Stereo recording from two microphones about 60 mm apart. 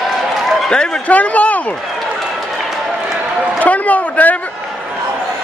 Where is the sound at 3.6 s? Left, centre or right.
Left.